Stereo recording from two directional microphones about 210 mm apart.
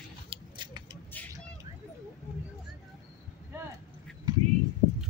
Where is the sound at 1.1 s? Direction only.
10° left (ahead or behind).